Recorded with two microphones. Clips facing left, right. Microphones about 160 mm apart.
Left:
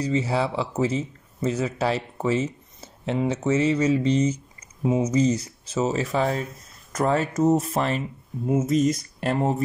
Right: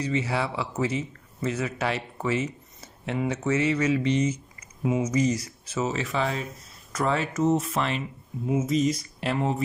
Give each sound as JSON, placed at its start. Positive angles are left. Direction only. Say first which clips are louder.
{"t": 0.0, "sound": "a man's voice", "louder": "left 3 dB", "side_deg": 30}